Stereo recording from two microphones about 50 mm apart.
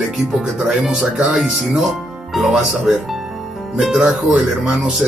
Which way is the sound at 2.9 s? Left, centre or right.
Centre.